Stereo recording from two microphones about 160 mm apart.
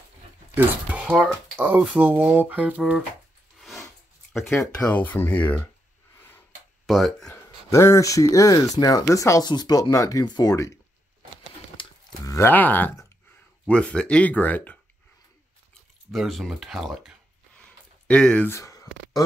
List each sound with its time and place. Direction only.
0.6 s speech: 10° right (ahead or behind)
3.5 s a sound: centre (ahead or behind)
4.3 s speech: centre (ahead or behind)
6.9 s speech: centre (ahead or behind)
7.2 s speech: 15° left (ahead or behind)
11.7 s a sound: 30° left (ahead or behind)
12.4 s speech: 10° left (ahead or behind)
16.1 s speech: centre (ahead or behind)
17.6 s a sound: 5° left (ahead or behind)